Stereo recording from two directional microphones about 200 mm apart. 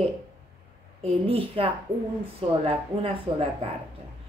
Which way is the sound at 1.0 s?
30° right (ahead or behind).